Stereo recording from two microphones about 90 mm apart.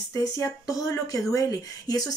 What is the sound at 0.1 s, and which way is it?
Speech, 40° left (ahead or behind).